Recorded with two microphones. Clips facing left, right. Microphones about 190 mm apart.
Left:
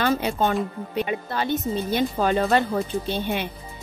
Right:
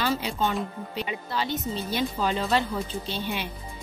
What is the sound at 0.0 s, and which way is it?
Speech, 55° left (ahead or behind).